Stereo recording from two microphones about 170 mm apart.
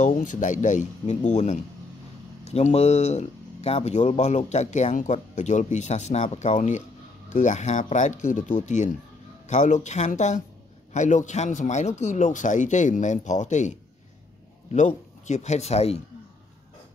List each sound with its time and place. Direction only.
0.0 s speech: 50° left (ahead or behind)